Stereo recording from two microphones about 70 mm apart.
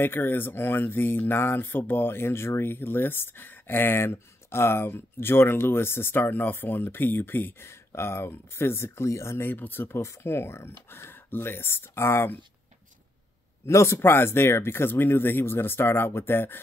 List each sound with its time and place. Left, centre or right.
0.0 s speech: left
13.7 s speech: left